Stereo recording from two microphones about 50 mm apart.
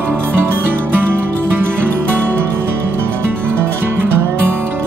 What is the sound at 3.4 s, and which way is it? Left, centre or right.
Music, right.